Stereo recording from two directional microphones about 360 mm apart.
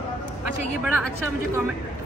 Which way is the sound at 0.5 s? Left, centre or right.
Left.